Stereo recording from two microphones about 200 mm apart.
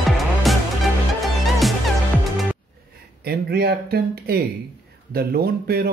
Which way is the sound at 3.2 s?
50° right (ahead or behind).